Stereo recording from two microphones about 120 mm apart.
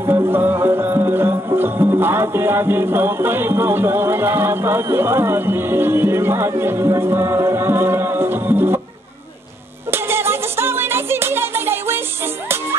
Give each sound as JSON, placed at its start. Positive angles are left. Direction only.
{"t": 0.0, "sound": "music", "side_deg": -20}
{"t": 9.8, "sound": "music", "side_deg": -20}